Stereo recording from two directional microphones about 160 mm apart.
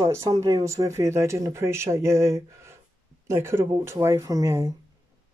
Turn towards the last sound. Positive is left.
turn(degrees=-15)  # may be behind; listen again after turning